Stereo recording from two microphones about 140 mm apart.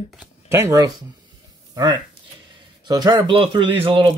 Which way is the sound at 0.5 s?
20° right (ahead or behind).